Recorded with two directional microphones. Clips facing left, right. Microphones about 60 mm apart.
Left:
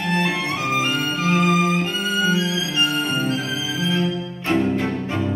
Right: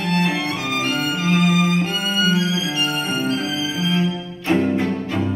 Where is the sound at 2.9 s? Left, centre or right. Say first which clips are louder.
Even; right.